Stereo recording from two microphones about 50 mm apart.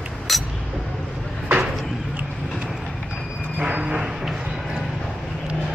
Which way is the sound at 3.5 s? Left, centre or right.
Centre.